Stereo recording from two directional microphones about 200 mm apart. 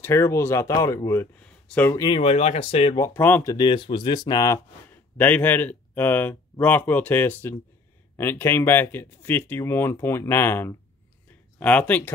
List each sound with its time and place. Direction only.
0.0 s speech: 15° left (ahead or behind)
3.0 s speech: 10° left (ahead or behind)
3.5 s speech: 25° left (ahead or behind)
5.1 s speech: 10° left (ahead or behind)